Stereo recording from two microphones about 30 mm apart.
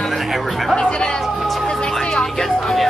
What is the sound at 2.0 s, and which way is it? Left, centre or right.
Music, left.